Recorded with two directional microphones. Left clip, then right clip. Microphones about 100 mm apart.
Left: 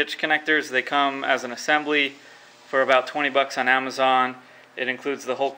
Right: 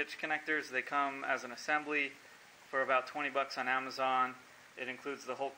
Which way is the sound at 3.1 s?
35° left (ahead or behind).